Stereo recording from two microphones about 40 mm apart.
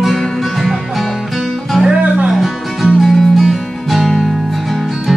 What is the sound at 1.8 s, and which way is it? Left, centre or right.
Music, right.